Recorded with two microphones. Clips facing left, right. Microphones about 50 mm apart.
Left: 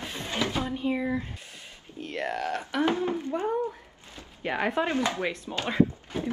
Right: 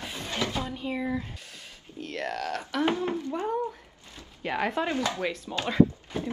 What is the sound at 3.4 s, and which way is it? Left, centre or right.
Speech, centre.